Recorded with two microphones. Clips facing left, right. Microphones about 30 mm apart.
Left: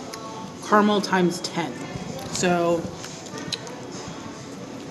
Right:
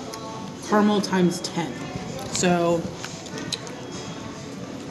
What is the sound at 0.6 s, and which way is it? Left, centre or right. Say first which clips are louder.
Speech: left 1 dB; centre.